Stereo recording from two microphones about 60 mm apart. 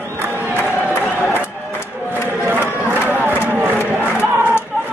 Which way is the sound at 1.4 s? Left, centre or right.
Left.